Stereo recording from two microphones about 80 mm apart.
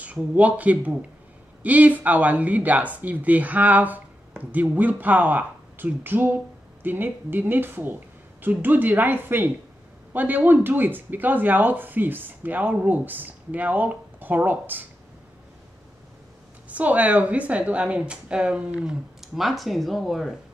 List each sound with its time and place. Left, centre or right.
0.0 s speech: centre
16.6 s a woman's voice: centre